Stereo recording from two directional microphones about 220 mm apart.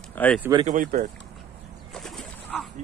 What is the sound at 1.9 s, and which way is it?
Pigeon, centre (ahead or behind).